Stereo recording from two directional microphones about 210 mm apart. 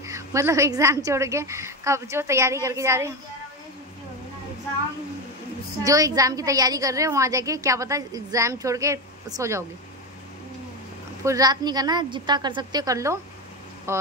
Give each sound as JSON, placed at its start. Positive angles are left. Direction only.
{"t": 0.0, "sound": "a woman's voice", "side_deg": -15}
{"t": 5.9, "sound": "a woman's voice", "side_deg": -15}
{"t": 11.2, "sound": "a woman's voice", "side_deg": -15}